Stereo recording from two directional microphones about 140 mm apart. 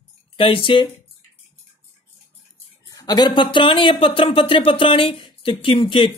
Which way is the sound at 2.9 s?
25° left (ahead or behind).